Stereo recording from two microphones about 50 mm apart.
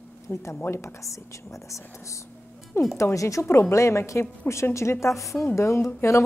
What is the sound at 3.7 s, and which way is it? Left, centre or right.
A woman's voice, left.